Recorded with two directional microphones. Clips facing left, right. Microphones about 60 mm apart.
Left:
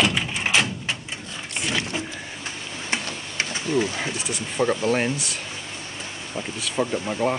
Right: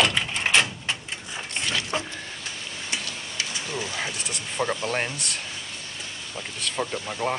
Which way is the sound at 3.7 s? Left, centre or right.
Left.